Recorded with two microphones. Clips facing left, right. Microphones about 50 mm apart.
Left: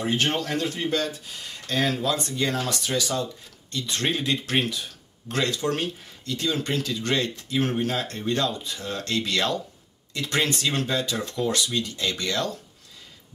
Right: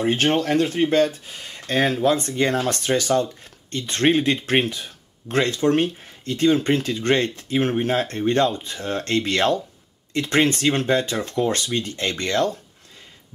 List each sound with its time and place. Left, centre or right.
0.0 s speech: right